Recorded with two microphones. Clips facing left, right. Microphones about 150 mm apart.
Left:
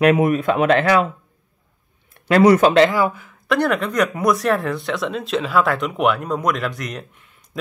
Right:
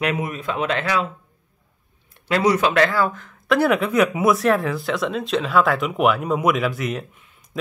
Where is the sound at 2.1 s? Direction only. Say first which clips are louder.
Left 6 dB; 55° left (ahead or behind).